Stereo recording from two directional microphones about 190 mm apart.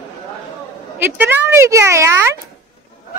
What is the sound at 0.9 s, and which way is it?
Speech, 10° right (ahead or behind).